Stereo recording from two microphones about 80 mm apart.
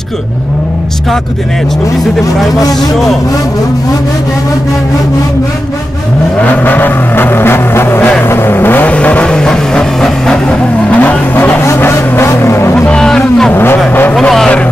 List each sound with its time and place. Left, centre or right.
6.4 s vehicle: left
8.9 s vehicle: centre; by 12.7 s left
12.7 s vehicle: centre
13.5 s vehicle: left